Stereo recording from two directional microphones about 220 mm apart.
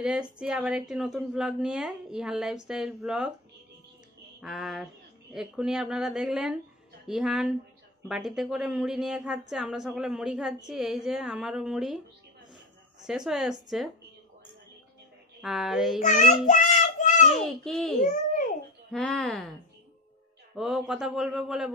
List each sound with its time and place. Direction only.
0.0 s a woman's voice: 5° right (ahead or behind)
4.4 s a woman's voice: centre (ahead or behind)
13.0 s a woman's voice: centre (ahead or behind)
15.4 s a woman's voice: centre (ahead or behind)
16.0 s child singing: 35° left (ahead or behind)
17.4 s a woman's voice: centre (ahead or behind)
18.0 s babbling: 35° left (ahead or behind)
18.9 s a woman's voice: centre (ahead or behind)
20.5 s a woman's voice: centre (ahead or behind)